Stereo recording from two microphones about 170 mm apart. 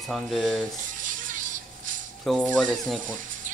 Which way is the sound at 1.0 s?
50° right (ahead or behind).